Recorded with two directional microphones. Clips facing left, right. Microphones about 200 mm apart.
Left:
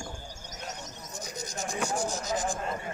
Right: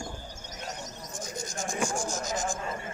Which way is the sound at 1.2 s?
50° right (ahead or behind).